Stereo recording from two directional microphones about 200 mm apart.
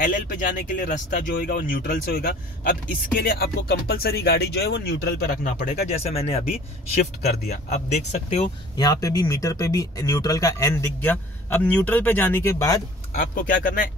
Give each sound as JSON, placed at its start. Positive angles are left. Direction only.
{"t": 0.0, "sound": "speech", "side_deg": 45}
{"t": 5.4, "sound": "speech", "side_deg": 35}
{"t": 8.7, "sound": "speech", "side_deg": 20}
{"t": 13.1, "sound": "speech", "side_deg": 40}